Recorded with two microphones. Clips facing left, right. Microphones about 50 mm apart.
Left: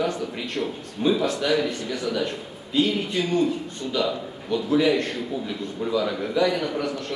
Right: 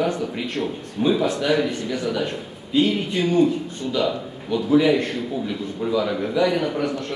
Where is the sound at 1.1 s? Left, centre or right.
Right.